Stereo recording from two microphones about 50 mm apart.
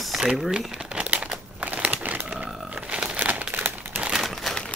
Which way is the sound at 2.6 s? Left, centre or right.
Right.